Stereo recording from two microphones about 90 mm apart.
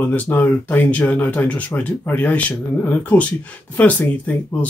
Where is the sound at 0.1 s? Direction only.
20° left (ahead or behind).